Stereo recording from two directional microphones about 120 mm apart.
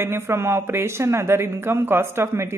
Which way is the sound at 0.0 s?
20° right (ahead or behind).